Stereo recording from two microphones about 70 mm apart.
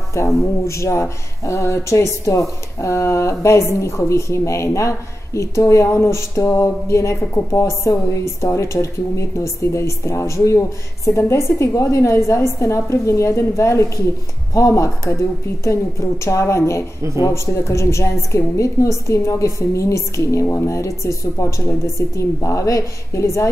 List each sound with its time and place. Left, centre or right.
0.1 s speech: left
16.3 s speech: left